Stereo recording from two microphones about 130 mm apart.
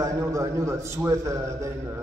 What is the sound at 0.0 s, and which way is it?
A man's voice, 25° right (ahead or behind).